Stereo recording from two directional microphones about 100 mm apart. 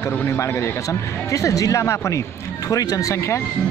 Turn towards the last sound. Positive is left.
turn(degrees=30)  # may be behind; listen again after turning